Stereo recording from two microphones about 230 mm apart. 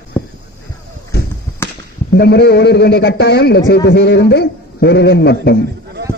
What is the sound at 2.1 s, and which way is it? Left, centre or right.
A man's voice, left.